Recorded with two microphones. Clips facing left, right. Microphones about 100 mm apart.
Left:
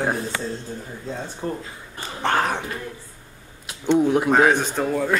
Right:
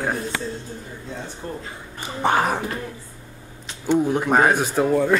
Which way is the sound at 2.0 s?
10° right (ahead or behind).